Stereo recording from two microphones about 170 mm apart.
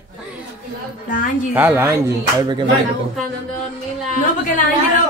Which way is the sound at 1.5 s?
10° right (ahead or behind).